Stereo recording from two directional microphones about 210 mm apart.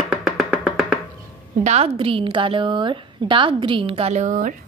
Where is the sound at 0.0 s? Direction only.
Centre (ahead or behind).